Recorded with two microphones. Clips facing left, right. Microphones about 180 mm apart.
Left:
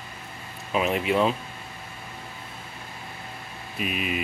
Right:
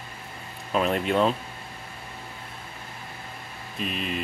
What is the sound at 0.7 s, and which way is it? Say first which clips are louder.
Speech: even; 5° left (ahead or behind).